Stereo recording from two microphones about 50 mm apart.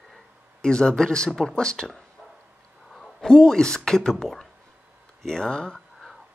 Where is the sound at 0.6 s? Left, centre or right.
Centre.